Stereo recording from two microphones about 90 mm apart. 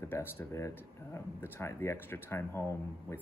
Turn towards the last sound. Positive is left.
turn(degrees=30)  # may be behind; listen again after turning